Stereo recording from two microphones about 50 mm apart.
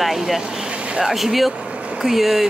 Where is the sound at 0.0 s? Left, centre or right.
Centre.